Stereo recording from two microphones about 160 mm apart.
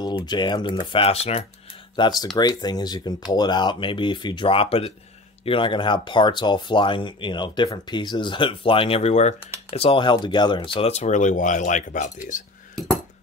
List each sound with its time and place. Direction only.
0.0 s speech: 25° left (ahead or behind)
2.0 s speech: 25° left (ahead or behind); by 12.5 s 55° left (ahead or behind)